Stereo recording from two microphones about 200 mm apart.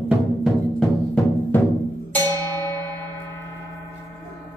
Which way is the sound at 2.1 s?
10° left (ahead or behind).